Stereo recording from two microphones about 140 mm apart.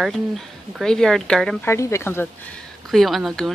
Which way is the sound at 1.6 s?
20° left (ahead or behind).